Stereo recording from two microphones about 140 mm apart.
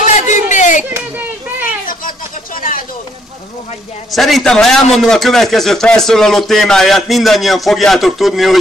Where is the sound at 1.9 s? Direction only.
80° left.